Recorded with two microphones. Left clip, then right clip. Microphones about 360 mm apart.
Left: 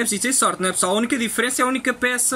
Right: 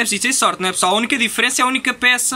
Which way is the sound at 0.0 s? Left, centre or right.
Centre.